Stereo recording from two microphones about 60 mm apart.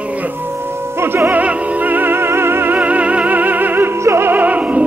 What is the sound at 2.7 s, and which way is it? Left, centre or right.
Music, right.